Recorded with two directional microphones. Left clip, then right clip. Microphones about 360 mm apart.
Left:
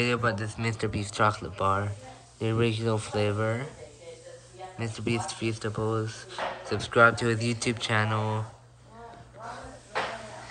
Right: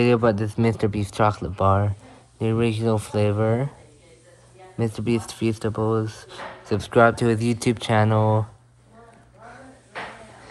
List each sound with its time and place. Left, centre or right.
0.0 s speech: centre
4.7 s speech: centre